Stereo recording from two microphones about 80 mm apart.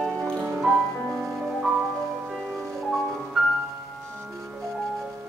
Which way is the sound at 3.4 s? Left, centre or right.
Centre.